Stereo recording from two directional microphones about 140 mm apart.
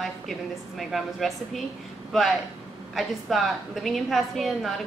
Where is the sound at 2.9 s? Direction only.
Centre (ahead or behind).